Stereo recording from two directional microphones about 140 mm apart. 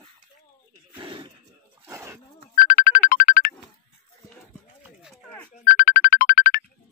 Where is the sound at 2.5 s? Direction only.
80° left.